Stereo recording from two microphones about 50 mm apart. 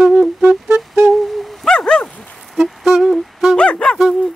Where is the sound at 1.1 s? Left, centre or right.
Centre.